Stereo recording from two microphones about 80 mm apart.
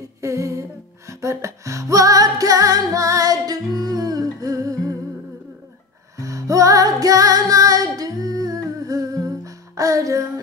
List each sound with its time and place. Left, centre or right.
0.2 s music: right
6.1 s music: right